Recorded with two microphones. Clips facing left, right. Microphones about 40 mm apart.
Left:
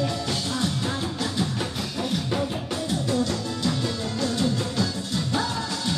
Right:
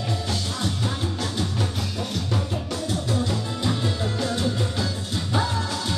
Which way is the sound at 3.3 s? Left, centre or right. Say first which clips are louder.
Even; centre.